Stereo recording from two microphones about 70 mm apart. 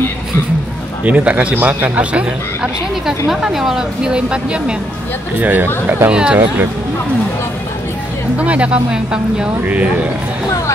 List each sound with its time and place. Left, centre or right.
1.0 s speech: right
3.3 s speech: centre
5.4 s speech: right
6.1 s speech: centre
8.4 s speech: centre